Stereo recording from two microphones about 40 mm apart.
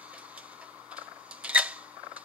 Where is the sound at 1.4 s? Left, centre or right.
Right.